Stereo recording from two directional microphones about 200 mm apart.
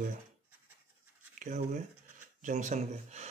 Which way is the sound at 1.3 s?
40° right (ahead or behind).